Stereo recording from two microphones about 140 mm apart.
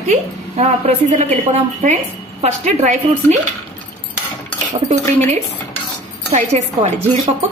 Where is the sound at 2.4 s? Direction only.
50° right (ahead or behind).